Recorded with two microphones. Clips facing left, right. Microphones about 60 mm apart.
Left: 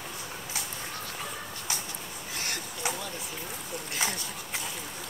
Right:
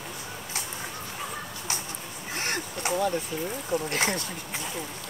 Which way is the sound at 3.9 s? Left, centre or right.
Right.